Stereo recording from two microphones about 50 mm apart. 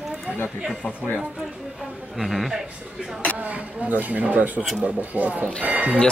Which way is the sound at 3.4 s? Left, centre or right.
Right.